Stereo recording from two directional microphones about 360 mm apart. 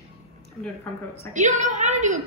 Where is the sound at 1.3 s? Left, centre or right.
Centre.